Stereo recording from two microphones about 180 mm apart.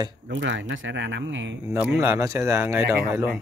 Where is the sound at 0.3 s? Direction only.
90° right.